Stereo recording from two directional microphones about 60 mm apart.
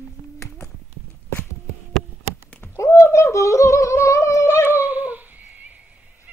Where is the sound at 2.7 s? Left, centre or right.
Left.